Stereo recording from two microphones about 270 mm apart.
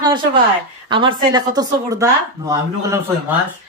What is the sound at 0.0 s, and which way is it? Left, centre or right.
A woman's voice, centre.